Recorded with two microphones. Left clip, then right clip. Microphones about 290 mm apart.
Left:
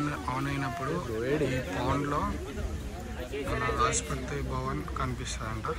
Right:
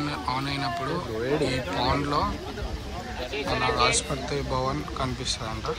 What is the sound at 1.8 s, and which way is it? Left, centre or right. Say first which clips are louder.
Speech: right 6 dB; centre.